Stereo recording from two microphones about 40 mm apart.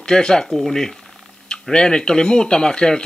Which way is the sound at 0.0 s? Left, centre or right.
Centre.